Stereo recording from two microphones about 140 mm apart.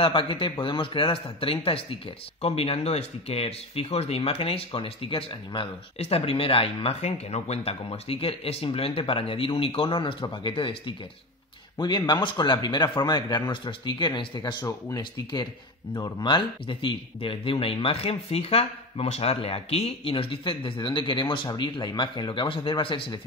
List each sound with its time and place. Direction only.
0.0 s speech: 40° left (ahead or behind)
15.9 s speech: 30° left (ahead or behind)